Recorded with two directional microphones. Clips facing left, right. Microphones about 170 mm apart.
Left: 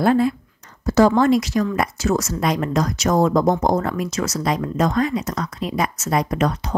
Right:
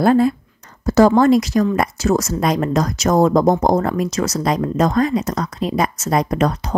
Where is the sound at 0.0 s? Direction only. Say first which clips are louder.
Right 3 dB; 40° right (ahead or behind).